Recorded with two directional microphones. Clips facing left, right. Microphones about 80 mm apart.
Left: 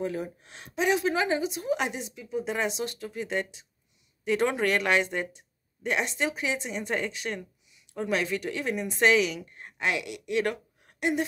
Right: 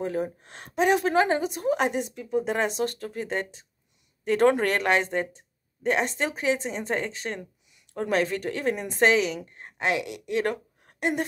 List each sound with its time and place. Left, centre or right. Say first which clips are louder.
0.0 s speech: right 3 dB; right